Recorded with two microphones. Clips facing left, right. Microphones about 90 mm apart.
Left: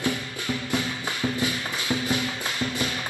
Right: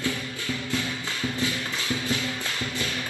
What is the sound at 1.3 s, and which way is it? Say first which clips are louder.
Music: left 1 dB; 15° left (ahead or behind).